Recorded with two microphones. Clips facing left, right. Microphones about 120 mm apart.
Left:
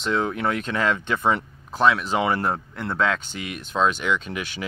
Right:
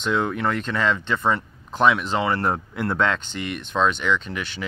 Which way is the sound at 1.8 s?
Centre (ahead or behind).